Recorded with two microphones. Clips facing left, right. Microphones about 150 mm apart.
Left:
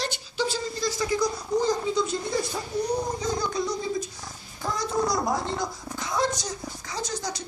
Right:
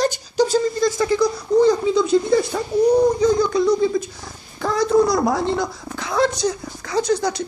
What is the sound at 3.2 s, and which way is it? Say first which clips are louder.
Speech: right 11 dB; 70° right (ahead or behind).